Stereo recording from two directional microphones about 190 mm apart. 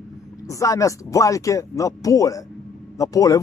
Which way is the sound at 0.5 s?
15° left (ahead or behind).